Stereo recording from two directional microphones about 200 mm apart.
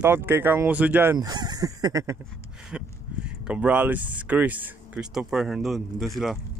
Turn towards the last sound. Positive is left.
turn(degrees=0)  # may be behind; listen again after turning